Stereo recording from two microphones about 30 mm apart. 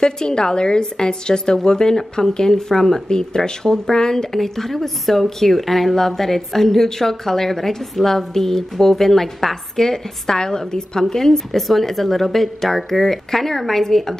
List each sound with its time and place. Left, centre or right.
0.0 s a woman's voice: left
3.1 s a woman's voice: left
4.4 s speech: centre